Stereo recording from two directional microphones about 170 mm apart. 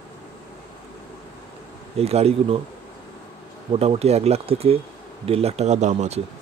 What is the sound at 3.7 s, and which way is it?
Speech, 35° right (ahead or behind).